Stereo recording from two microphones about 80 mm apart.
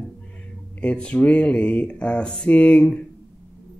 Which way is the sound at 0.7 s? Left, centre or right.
Centre.